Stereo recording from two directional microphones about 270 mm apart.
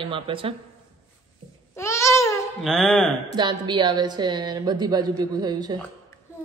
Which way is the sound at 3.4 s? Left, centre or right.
Centre.